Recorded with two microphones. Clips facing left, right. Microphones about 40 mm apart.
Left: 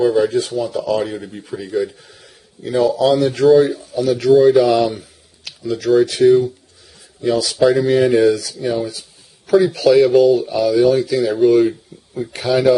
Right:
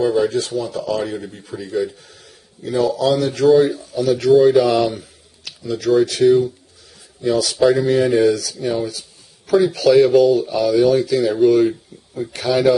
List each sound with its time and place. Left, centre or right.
0.0 s speech: centre